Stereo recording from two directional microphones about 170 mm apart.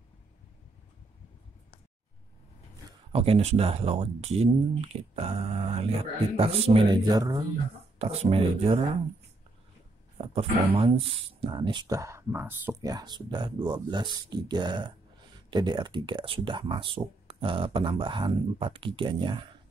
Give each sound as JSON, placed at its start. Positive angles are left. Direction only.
{"t": 3.1, "sound": "speech", "side_deg": -35}
{"t": 7.1, "sound": "speech", "side_deg": -25}
{"t": 8.0, "sound": "speech", "side_deg": -35}
{"t": 10.1, "sound": "speech", "side_deg": -35}